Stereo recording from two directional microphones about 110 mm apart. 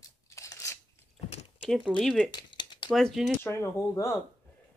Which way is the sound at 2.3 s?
45° left (ahead or behind).